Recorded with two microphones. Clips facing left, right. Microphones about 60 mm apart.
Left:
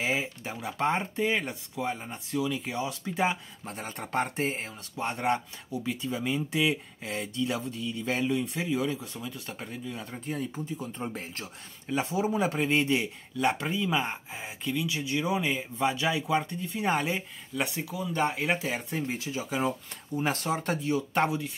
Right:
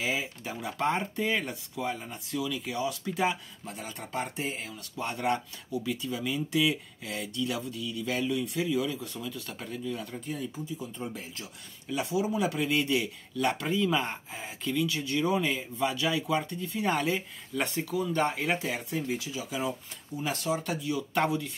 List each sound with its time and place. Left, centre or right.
0.0 s speech: left
3.6 s speech: left
10.2 s speech: left
17.6 s speech: centre
18.7 s speech: left